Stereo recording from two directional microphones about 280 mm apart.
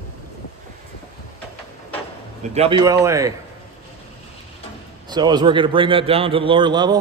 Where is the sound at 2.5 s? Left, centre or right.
Centre.